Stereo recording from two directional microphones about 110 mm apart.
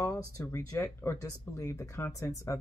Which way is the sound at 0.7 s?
20° left (ahead or behind).